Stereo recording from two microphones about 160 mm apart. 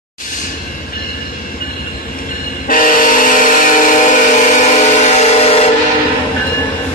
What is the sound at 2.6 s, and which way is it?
Train, 60° left (ahead or behind).